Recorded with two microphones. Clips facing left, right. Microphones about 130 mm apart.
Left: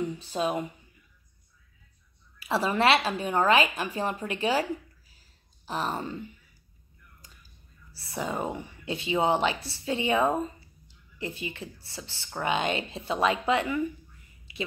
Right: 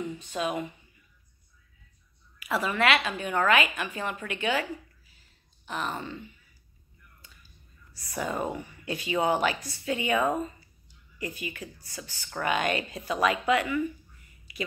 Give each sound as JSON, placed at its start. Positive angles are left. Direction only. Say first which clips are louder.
{"t": 0.2, "sound": "a woman's voice", "louder": "even", "side_deg": 35}
{"t": 2.3, "sound": "a woman's voice", "louder": "left 2 dB", "side_deg": 30}
{"t": 5.7, "sound": "a woman's voice", "louder": "left 2 dB", "side_deg": 35}
{"t": 7.9, "sound": "speech", "louder": "even", "side_deg": 30}
{"t": 14.5, "sound": "a sound", "louder": "even", "side_deg": 25}